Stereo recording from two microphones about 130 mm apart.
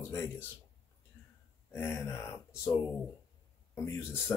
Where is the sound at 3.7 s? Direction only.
20° left (ahead or behind).